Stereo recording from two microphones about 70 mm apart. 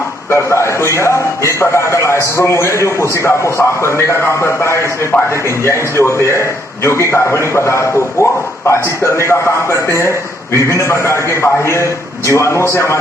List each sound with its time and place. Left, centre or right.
0.3 s a man's voice: left